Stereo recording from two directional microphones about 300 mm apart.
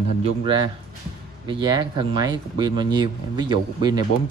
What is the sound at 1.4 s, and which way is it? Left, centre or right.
Speech, centre.